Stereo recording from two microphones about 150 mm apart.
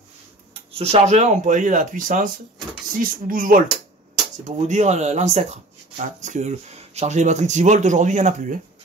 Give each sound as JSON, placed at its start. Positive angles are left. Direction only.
{"t": 0.7, "sound": "speech", "side_deg": -45}
{"t": 4.5, "sound": "speech", "side_deg": -50}